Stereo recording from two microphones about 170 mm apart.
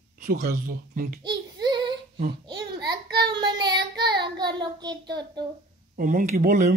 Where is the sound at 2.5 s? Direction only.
25° right (ahead or behind).